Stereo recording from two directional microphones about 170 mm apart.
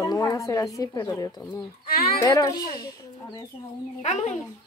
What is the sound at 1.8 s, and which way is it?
Speech, 60° left (ahead or behind).